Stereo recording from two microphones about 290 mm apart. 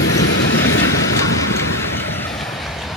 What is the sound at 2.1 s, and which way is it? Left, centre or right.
Train, centre.